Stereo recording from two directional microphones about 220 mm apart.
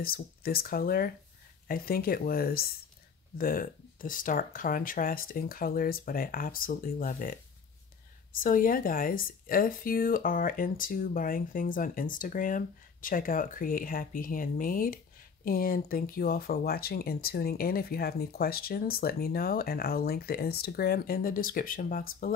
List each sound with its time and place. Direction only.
0.0 s speech: 40° left (ahead or behind)